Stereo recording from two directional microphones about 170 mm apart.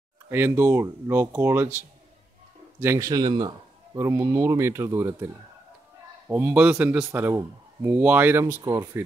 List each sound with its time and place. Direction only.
0.3 s a man's voice: 15° right (ahead or behind)
6.2 s a man's voice: 10° right (ahead or behind)